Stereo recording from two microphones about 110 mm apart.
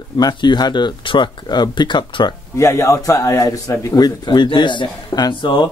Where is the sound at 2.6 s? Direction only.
25° left (ahead or behind); by 5.7 s 45° left (ahead or behind).